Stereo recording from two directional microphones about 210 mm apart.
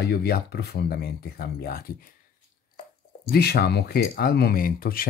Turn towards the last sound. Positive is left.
turn(degrees=45)  # may be behind; listen again after turning